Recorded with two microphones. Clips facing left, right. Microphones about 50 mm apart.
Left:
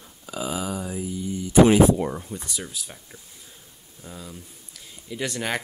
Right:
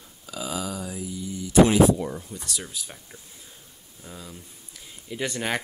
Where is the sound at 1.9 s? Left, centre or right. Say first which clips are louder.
Left 2 dB; left.